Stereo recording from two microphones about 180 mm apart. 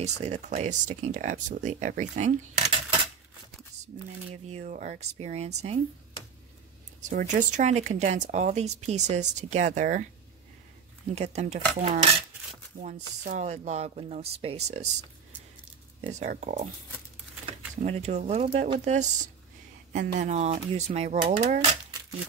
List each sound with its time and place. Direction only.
0.0 s speech: 40° right (ahead or behind)
4.3 s speech: 35° right (ahead or behind)
7.1 s speech: 45° right (ahead or behind)
11.1 s speech: 35° right (ahead or behind)
12.8 s speech: 45° right (ahead or behind)
16.1 s speech: 40° right (ahead or behind)